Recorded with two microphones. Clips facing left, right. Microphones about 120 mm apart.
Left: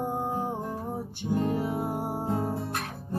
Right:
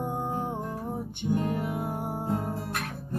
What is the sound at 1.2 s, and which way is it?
Music, 25° left (ahead or behind).